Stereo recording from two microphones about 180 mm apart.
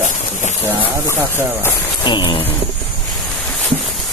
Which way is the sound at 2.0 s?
25° left (ahead or behind).